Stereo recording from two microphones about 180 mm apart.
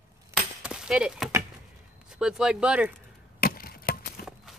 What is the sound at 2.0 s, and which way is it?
Speech, 5° right (ahead or behind).